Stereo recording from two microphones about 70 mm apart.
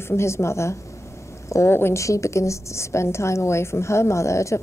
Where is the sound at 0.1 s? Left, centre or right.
Left.